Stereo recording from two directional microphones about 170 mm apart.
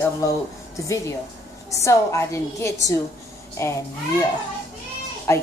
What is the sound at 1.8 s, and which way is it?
Speech, 15° left (ahead or behind).